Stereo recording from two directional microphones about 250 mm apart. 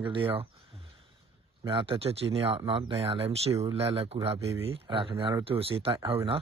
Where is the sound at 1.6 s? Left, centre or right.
Right.